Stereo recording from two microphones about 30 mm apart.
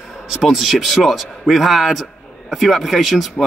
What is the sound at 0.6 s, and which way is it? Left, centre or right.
Speech, centre.